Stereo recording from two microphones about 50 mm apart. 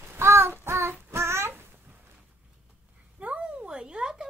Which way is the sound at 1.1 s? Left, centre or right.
Right.